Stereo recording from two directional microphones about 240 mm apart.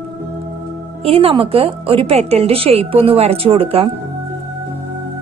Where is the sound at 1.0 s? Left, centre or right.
Right.